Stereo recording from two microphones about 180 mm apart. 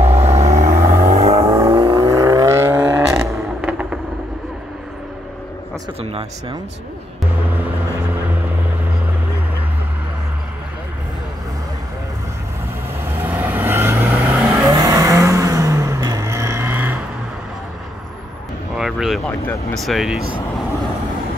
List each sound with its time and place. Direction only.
0.3 s vehicle: 40° right (ahead or behind)
1.4 s vehicle: 20° right (ahead or behind)
13.0 s vehicle: 10° right (ahead or behind)
18.8 s a sound: centre (ahead or behind)